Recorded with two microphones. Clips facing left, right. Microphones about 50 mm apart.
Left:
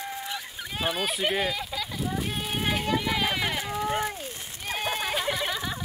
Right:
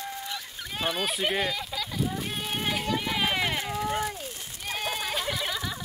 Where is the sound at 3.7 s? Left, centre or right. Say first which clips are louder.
Left 1 dB; centre.